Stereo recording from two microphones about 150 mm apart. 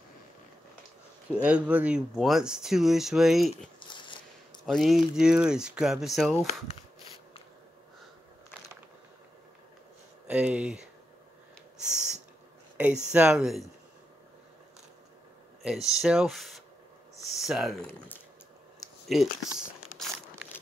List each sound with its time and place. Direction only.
1.3 s speech: 10° right (ahead or behind)
3.9 s a sound: 30° left (ahead or behind)
4.6 s speech: centre (ahead or behind)
10.2 s speech: 10° right (ahead or behind)
12.7 s speech: 10° right (ahead or behind)
15.6 s speech: centre (ahead or behind)
17.8 s speech: 10° left (ahead or behind)
19.0 s speech: centre (ahead or behind)